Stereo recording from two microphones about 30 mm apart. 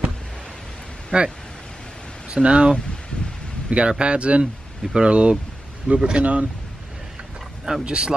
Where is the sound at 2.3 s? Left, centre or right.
Right.